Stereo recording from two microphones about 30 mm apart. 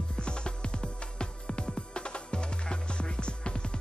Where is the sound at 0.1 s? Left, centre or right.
Left.